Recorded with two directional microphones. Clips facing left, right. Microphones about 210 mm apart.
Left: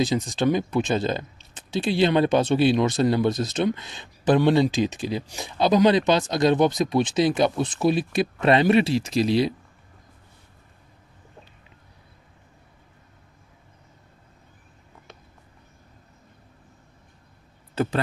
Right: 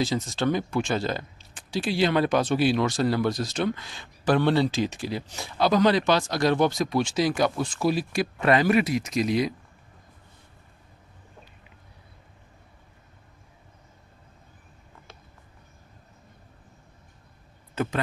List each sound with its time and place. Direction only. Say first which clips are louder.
0.0 s speech: left 3 dB; 15° left (ahead or behind)
17.8 s speech: left 3 dB; 35° left (ahead or behind)